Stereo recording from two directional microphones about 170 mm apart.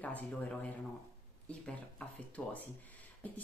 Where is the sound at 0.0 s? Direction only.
10° left (ahead or behind).